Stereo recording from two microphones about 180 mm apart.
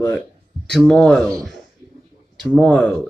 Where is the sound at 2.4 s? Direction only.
5° left (ahead or behind).